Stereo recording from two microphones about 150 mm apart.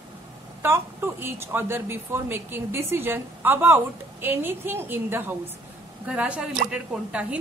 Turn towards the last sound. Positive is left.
turn(degrees=-10)  # may be behind; listen again after turning